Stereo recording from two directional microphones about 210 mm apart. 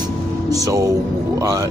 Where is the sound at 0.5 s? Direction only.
15° right (ahead or behind).